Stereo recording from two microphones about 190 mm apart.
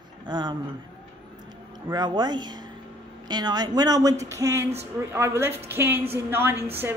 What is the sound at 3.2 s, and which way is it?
A woman's voice, 20° right (ahead or behind).